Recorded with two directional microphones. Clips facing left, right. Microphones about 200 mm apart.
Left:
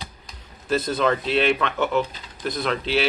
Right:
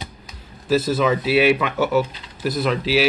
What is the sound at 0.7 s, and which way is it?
Speech, 5° right (ahead or behind).